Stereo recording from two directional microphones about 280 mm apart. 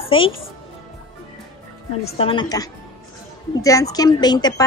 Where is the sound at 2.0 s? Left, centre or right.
Left.